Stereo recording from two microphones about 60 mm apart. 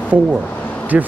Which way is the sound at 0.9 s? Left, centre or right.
Right.